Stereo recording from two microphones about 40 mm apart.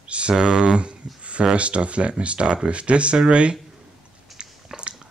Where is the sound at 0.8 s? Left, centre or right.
Right.